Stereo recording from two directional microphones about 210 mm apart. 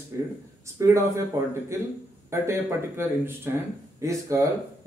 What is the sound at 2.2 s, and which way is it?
Speech, 10° right (ahead or behind).